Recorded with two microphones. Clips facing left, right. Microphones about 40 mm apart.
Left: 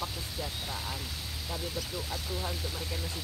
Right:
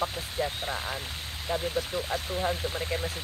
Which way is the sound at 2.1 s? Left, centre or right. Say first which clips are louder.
Right 8 dB; right.